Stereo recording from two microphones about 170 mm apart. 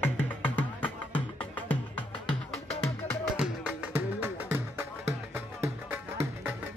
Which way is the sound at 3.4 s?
10° right (ahead or behind).